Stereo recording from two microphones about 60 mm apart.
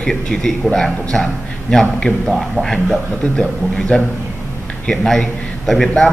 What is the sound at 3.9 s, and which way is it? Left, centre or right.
Speech, centre.